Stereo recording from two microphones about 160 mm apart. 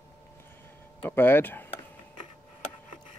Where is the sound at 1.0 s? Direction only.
15° left (ahead or behind).